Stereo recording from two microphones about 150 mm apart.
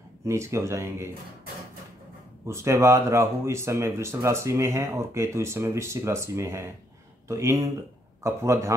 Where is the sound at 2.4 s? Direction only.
20° right (ahead or behind).